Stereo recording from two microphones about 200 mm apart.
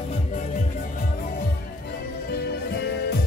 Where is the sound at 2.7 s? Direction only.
55° left (ahead or behind).